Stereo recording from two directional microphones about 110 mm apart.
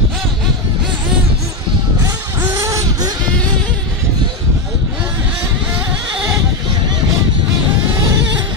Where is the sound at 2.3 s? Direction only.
30° right (ahead or behind).